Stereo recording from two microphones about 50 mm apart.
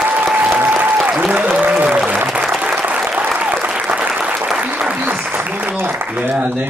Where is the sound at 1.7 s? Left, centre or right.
Right.